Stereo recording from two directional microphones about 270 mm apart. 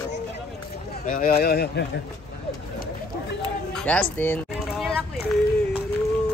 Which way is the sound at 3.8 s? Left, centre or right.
Centre.